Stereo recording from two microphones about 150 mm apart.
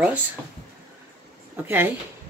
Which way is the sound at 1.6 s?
15° right (ahead or behind).